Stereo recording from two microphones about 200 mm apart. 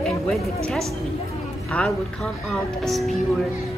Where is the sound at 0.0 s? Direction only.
Centre (ahead or behind).